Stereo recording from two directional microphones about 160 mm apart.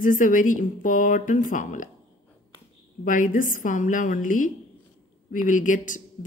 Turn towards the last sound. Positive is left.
turn(degrees=55)  # may be behind; listen again after turning